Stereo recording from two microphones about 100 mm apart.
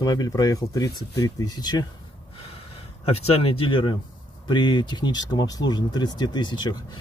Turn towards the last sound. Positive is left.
turn(degrees=45)  # may be behind; listen again after turning